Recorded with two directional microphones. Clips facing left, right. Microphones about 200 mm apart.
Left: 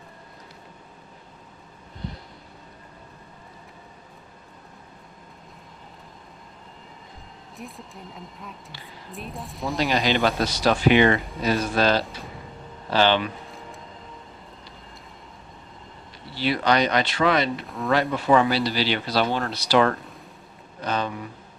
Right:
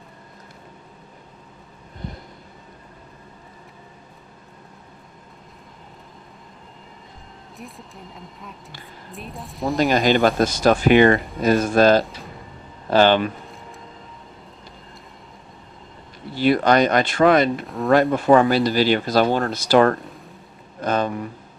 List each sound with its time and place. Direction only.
7.5 s speech: centre (ahead or behind)
9.8 s speech: 50° right (ahead or behind)
16.3 s speech: 50° right (ahead or behind)
20.8 s a sound: 50° right (ahead or behind)